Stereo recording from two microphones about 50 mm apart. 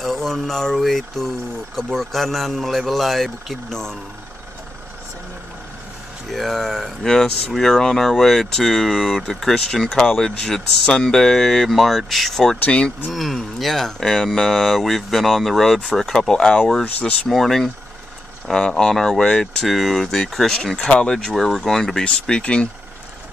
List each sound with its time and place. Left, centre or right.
0.0 s speech: centre
6.3 s speech: centre
12.5 s speech: left
13.1 s speech: centre
20.7 s speech: centre
21.2 s speech: centre; by 22.7 s left